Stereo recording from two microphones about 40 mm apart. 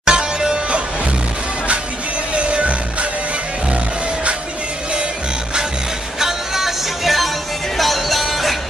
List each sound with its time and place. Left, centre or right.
0.0 s music: centre
2.3 s music: right
6.1 s music: centre